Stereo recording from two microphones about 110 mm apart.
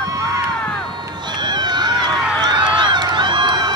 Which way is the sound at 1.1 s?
45° right (ahead or behind).